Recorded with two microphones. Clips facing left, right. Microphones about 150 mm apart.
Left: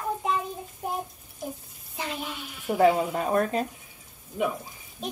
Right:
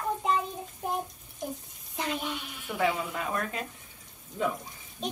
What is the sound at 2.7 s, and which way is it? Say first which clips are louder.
Speech: left 8 dB; 45° left (ahead or behind).